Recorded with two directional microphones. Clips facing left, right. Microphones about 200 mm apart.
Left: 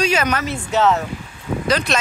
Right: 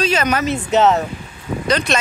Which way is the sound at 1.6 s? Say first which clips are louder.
Right 1 dB; 5° left (ahead or behind).